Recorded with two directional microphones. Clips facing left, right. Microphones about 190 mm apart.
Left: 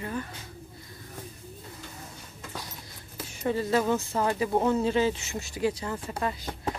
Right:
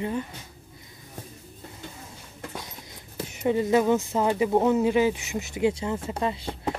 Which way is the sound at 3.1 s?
20° right (ahead or behind).